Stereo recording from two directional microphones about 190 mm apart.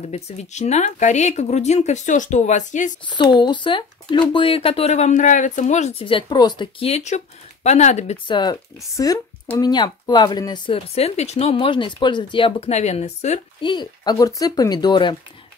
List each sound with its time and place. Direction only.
0.1 s speech: 35° left (ahead or behind)
3.1 s speech: 25° left (ahead or behind)
8.3 s speech: 25° left (ahead or behind)
13.6 s speech: 25° left (ahead or behind)